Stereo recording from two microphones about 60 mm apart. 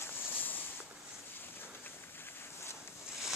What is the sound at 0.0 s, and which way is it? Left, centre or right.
Boat, left.